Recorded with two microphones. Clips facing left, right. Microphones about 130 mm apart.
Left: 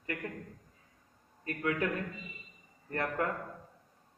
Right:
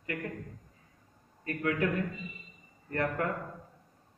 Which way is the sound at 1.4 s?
25° left (ahead or behind).